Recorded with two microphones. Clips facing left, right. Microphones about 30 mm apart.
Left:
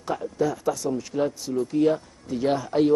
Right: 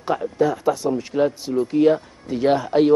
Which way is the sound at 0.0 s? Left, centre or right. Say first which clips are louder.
Right 5 dB; right.